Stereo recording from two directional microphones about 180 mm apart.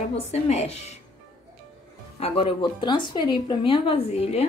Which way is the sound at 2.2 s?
30° left (ahead or behind).